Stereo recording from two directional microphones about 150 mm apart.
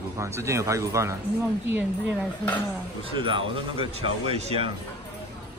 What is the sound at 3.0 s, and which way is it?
Speech, 35° right (ahead or behind).